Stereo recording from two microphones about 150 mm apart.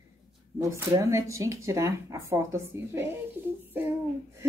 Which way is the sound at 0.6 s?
20° right (ahead or behind).